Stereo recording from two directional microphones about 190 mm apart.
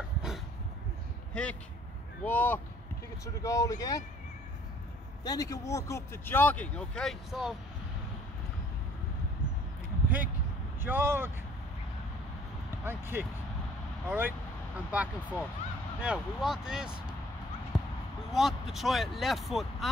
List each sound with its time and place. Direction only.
1.3 s speech: 5° left (ahead or behind)
5.2 s speech: 20° left (ahead or behind); by 7.5 s centre (ahead or behind)
10.0 s a sound: 10° right (ahead or behind)
10.8 s speech: 10° right (ahead or behind)
12.8 s speech: 10° right (ahead or behind)
17.7 s basketball bounce: centre (ahead or behind)
18.3 s speech: centre (ahead or behind)